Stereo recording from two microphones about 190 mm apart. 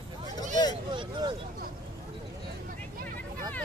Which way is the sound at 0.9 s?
25° right (ahead or behind).